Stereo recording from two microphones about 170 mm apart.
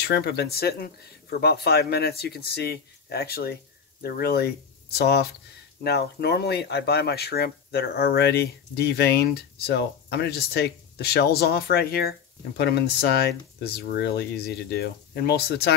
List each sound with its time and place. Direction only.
0.0 s speech: 70° left (ahead or behind)